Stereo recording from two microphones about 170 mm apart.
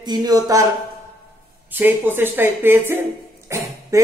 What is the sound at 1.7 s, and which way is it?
A man's voice, 10° right (ahead or behind).